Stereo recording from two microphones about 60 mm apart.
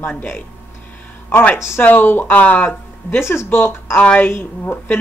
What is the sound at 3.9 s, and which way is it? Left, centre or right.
Speech, left.